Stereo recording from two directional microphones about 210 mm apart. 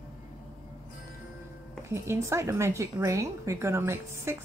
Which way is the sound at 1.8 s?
10° right (ahead or behind).